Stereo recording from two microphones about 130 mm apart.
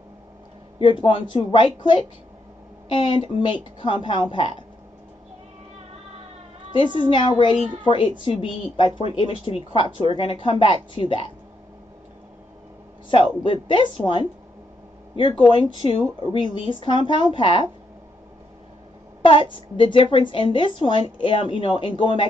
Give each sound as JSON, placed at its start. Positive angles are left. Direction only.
{"t": 0.7, "sound": "a woman's voice", "side_deg": 40}
{"t": 7.0, "sound": "a woman's voice", "side_deg": 40}
{"t": 13.1, "sound": "a woman's voice", "side_deg": 40}
{"t": 19.2, "sound": "a woman's voice", "side_deg": 40}